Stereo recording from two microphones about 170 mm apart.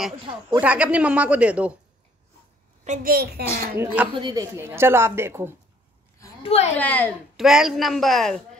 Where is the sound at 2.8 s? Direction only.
55° right (ahead or behind).